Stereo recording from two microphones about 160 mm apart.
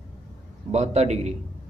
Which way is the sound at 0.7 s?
45° right (ahead or behind).